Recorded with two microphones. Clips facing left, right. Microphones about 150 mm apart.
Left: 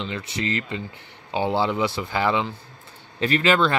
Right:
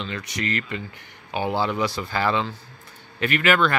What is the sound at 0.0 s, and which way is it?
Speech, 25° left (ahead or behind).